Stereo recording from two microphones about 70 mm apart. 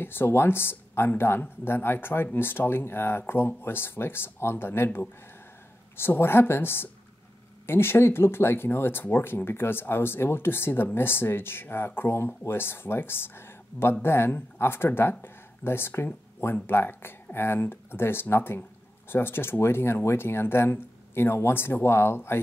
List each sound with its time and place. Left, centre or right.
0.0 s speech: left